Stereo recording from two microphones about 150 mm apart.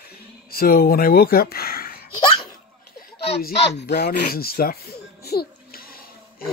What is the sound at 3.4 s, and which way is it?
Speech, 90° left.